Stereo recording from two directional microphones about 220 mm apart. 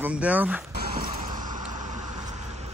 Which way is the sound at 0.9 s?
40° right (ahead or behind).